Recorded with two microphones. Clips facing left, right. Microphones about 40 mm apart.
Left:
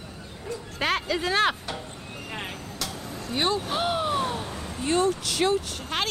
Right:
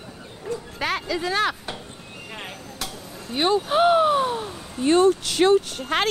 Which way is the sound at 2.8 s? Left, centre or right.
Right.